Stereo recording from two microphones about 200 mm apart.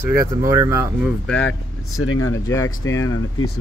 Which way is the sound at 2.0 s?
90° left.